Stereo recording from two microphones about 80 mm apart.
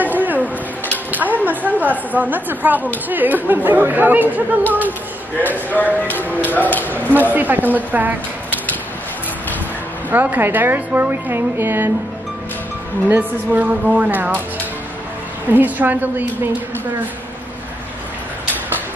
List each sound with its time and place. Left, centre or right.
0.0 s a sound: right
1.1 s a woman's voice: right
5.5 s speech: left
7.2 s a woman's voice: right
10.1 s a woman's voice: right
13.5 s speech: centre
15.5 s a woman's voice: right